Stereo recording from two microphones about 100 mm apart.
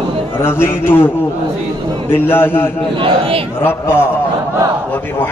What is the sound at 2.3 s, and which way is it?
Speech, 20° left (ahead or behind).